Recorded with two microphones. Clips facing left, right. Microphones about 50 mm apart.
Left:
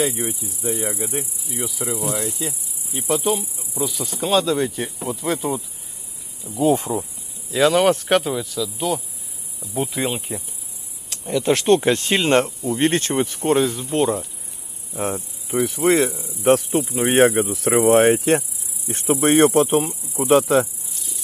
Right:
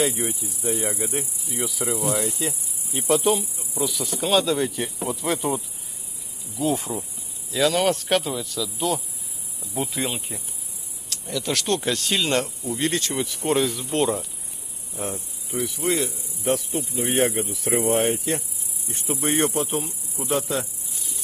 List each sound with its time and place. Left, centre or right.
0.0 s speech: centre
3.7 s cricket: left
4.5 s speech: centre
6.5 s cricket: left
6.8 s speech: centre
11.2 s speech: left
15.5 s speech: left
16.4 s speech: left
18.9 s speech: left